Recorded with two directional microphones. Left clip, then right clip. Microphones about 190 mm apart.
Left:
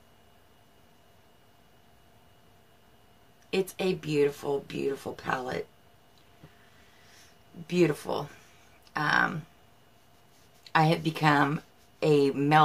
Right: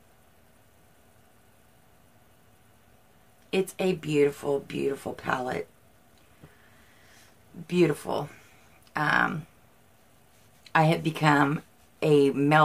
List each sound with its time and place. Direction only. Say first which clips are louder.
3.4 s speech: right 2 dB; 20° right (ahead or behind)
7.6 s speech: right 1 dB; 15° right (ahead or behind)
10.6 s speech: right 1 dB; 15° right (ahead or behind)